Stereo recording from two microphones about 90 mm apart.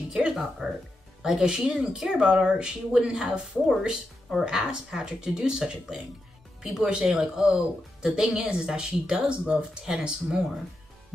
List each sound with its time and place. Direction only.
0.1 s speech: 5° right (ahead or behind)